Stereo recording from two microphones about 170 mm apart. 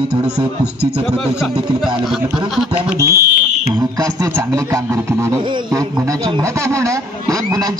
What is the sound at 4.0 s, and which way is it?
A man's voice, 20° right (ahead or behind).